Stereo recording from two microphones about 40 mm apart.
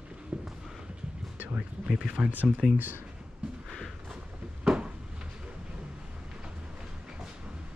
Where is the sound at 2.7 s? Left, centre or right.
Right.